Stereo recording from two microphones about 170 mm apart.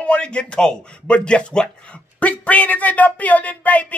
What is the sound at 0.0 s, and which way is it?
Speech, 5° left (ahead or behind).